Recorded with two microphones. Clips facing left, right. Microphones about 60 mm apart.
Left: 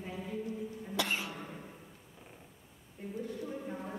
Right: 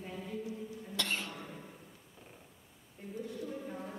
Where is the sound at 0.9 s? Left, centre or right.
Centre.